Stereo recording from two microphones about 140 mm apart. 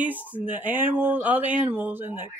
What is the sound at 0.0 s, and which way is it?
Speech, 10° right (ahead or behind).